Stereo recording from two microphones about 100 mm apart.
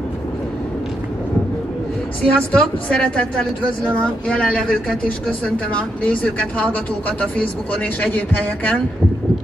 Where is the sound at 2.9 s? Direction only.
10° left (ahead or behind).